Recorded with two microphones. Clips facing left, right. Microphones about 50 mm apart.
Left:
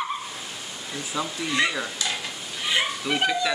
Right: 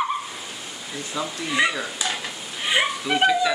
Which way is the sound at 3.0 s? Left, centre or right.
Centre.